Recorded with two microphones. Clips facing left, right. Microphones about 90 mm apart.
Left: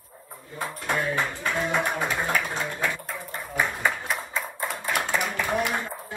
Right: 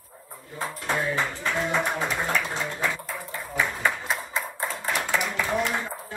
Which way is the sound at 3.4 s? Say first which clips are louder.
Even; 15° left (ahead or behind).